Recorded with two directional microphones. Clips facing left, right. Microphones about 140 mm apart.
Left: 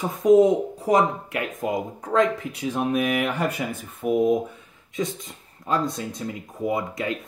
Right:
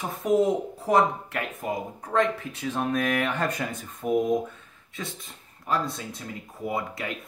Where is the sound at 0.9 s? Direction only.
15° left (ahead or behind).